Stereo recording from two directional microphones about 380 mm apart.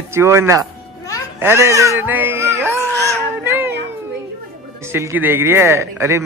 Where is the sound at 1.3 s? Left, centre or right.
Centre.